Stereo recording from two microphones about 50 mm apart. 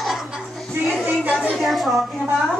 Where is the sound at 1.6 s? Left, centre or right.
Centre.